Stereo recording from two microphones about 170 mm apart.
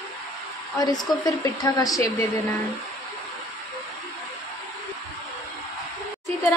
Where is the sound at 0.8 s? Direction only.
25° left (ahead or behind).